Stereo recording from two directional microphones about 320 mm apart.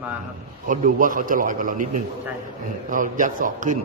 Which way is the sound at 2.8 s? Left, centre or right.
Right.